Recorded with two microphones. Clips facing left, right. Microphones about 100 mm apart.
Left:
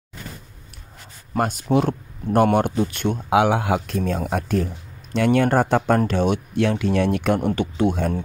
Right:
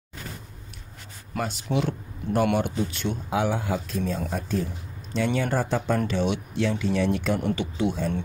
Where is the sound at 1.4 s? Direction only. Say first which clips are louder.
Left 7 dB; 50° left (ahead or behind).